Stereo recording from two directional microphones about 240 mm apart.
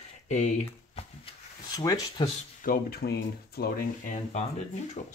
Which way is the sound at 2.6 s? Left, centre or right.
Left.